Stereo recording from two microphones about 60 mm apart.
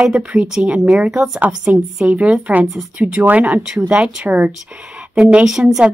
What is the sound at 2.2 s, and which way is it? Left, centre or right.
A woman's voice, right.